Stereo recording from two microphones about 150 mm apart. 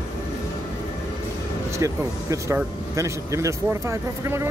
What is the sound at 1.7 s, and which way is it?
Speech, 20° right (ahead or behind).